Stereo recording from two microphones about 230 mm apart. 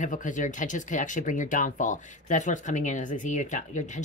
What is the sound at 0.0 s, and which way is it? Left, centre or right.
Speech, left.